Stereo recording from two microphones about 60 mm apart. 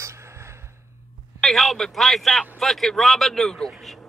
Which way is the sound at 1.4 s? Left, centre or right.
Centre.